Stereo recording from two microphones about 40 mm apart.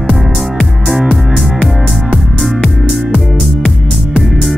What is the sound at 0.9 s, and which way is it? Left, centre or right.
Music, centre.